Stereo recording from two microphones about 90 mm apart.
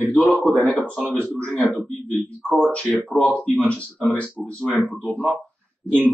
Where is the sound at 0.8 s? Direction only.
5° left (ahead or behind).